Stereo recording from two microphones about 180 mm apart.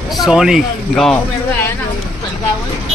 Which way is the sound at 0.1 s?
Centre (ahead or behind).